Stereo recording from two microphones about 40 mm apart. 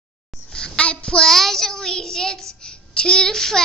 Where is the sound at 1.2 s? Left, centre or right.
Centre.